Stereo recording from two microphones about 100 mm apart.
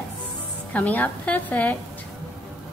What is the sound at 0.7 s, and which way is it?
A woman's voice, 15° left (ahead or behind).